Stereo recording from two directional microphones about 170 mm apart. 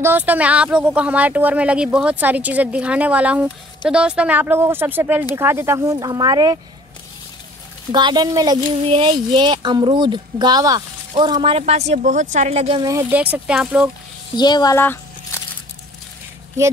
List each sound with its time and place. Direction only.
0.0 s speech: 10° right (ahead or behind)
7.9 s speech: 25° right (ahead or behind)
12.8 s speech: 20° right (ahead or behind)
13.2 s speech: 5° right (ahead or behind)
14.3 s speech: 25° left (ahead or behind)
14.8 s a sound: 15° left (ahead or behind)